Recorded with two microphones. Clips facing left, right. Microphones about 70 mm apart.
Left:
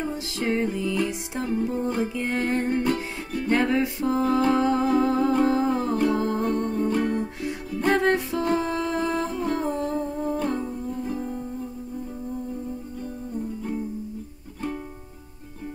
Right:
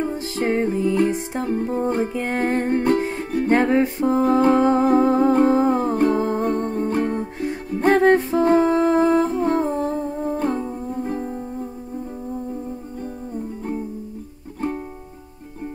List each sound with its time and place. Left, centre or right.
0.0 s music: right